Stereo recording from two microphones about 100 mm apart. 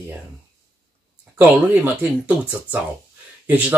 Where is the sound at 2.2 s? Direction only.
15° right (ahead or behind).